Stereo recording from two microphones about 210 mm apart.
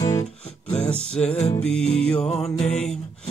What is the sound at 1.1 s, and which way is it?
Music, 5° left (ahead or behind).